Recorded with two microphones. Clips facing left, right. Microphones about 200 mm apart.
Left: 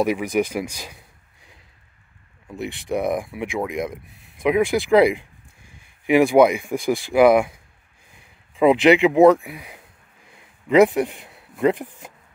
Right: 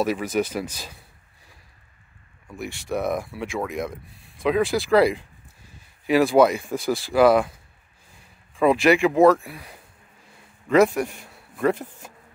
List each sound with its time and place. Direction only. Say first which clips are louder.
0.0 s speech: left 3 dB; 15° left (ahead or behind)
2.4 s speech: left 4 dB; 20° left (ahead or behind)
10.2 s a sound: left 2 dB; 15° left (ahead or behind)